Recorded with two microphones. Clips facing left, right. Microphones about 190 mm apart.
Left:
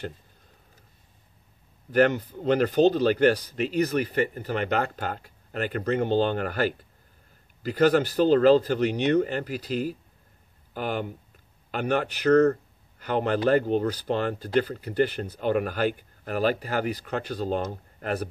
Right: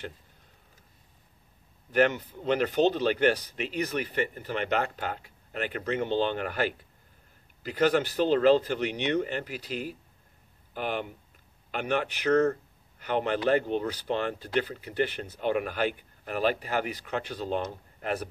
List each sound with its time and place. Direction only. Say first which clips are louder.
1.9 s speech: left 3 dB; 40° left (ahead or behind)